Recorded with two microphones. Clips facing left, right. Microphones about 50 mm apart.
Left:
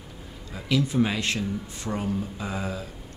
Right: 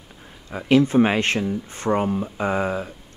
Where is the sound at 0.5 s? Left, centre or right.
Right.